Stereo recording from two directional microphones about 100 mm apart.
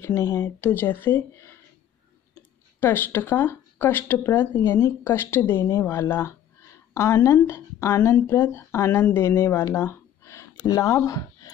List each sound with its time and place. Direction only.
0.0 s a woman's voice: 35° left (ahead or behind)
0.6 s speech: 20° left (ahead or behind)
2.8 s speech: 25° left (ahead or behind)
6.9 s a sound: 30° left (ahead or behind)
7.2 s speech: 25° left (ahead or behind)
9.8 s a sound: 30° left (ahead or behind)